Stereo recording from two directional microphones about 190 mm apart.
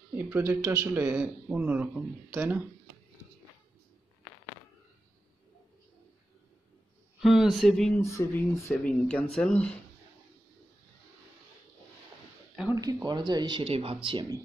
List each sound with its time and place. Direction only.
0.1 s speech: 10° right (ahead or behind)
7.2 s speech: centre (ahead or behind)
8.0 s speech: 15° left (ahead or behind)
12.7 s speech: 20° right (ahead or behind)